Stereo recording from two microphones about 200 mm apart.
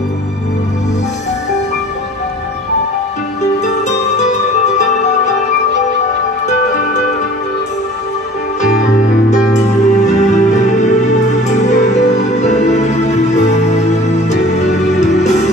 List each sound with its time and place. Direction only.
3.6 s music: 35° left (ahead or behind)
6.4 s music: 35° left (ahead or behind)
9.3 s music: 35° left (ahead or behind)